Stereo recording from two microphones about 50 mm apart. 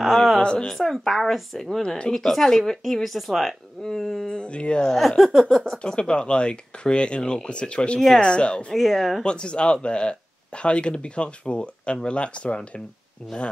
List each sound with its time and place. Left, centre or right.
0.0 s a sound: centre
0.4 s a sound: centre
0.7 s speech: centre
4.3 s speech: left
4.9 s speech: centre
5.8 s speech: centre
8.9 s speech: centre
9.2 s speech: centre